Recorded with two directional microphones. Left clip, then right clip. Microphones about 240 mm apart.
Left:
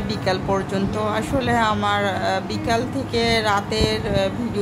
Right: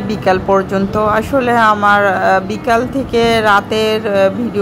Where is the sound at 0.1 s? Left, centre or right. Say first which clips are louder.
Right 10 dB; centre.